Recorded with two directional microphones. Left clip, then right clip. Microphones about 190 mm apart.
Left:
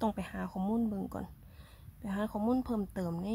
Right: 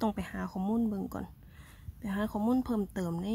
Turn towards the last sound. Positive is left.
turn(degrees=-5)  # may be behind; listen again after turning